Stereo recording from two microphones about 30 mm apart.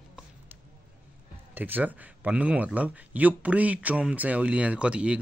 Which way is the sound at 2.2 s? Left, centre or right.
Right.